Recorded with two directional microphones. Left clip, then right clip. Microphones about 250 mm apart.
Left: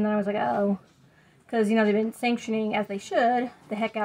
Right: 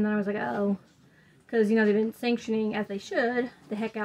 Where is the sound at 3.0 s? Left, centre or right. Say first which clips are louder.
Left 4 dB; left.